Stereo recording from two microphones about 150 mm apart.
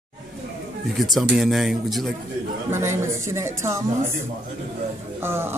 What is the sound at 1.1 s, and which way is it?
A man's voice, centre (ahead or behind).